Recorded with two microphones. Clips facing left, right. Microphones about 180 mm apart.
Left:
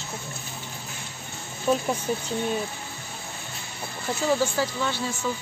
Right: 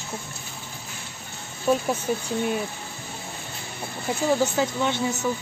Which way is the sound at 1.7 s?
5° right (ahead or behind).